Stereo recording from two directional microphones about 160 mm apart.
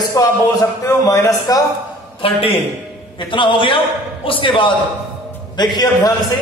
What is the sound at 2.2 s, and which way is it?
A man's voice, 35° left (ahead or behind).